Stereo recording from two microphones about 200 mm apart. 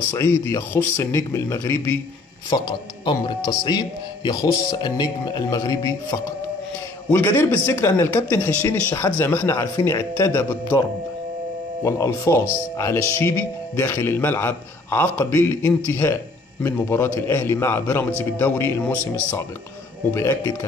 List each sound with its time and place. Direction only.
0.1 s speech: 15° left (ahead or behind)
2.5 s speech: 25° left (ahead or behind)
11.8 s speech: 15° left (ahead or behind)
20.1 s speech: 10° left (ahead or behind)